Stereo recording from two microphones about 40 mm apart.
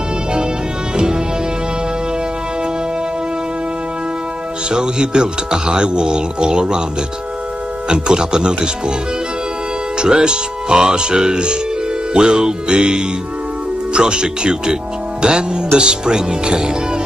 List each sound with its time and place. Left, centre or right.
4.6 s speech: right
7.9 s speech: centre
9.9 s speech: right